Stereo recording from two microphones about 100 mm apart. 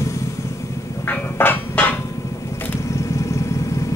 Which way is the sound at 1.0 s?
20° left (ahead or behind).